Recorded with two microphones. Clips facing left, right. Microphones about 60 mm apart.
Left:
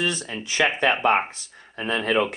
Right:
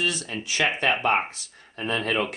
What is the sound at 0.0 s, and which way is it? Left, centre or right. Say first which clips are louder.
Speech: left 1 dB; left.